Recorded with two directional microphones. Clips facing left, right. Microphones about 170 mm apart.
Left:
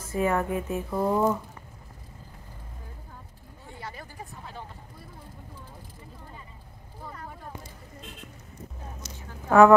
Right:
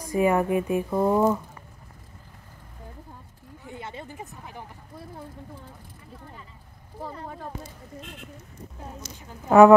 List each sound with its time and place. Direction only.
0.0 s speech: 15° right (ahead or behind)
3.6 s a sound: 20° right (ahead or behind)
9.5 s speech: 20° right (ahead or behind)